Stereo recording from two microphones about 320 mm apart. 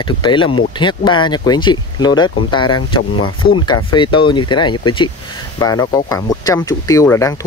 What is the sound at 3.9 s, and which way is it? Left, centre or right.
Speech, centre.